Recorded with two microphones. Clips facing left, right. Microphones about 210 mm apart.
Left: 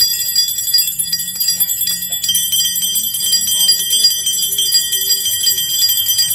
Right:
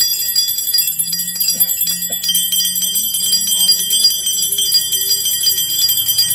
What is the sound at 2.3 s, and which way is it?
Bell, 40° right (ahead or behind).